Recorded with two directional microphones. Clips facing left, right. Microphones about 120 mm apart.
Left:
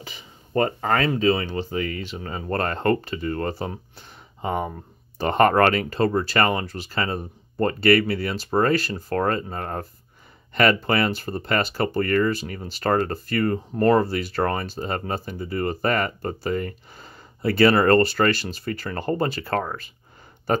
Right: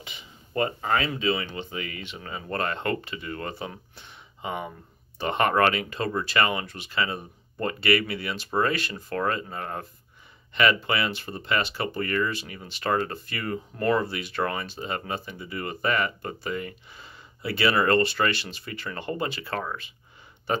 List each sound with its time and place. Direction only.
0.0 s speech: 35° left (ahead or behind)